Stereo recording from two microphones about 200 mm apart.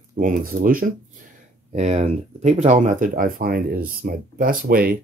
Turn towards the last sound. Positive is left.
turn(degrees=-45)  # may be behind; listen again after turning